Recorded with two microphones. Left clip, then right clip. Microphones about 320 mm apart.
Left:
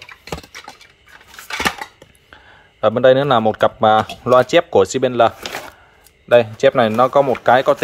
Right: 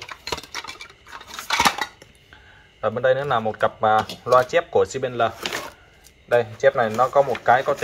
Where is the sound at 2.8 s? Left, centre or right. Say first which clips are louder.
Left 8 dB; left.